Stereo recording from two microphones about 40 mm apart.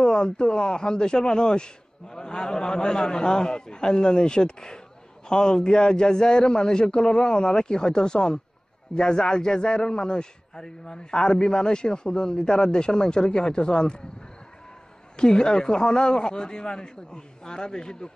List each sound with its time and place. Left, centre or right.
0.0 s a man's voice: centre
15.1 s a man's voice: centre